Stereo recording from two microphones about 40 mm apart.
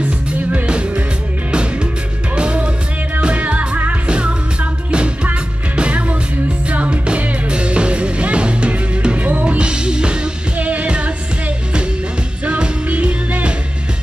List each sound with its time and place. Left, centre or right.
0.7 s music: right
2.3 s music: right
4.1 s music: right
10.6 s music: right
12.4 s music: right